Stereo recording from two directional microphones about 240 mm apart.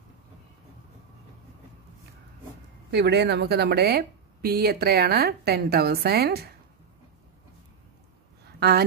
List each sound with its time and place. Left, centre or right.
2.9 s speech: right
8.5 s speech: right